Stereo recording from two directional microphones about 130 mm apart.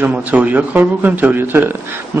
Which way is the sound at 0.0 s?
10° right (ahead or behind).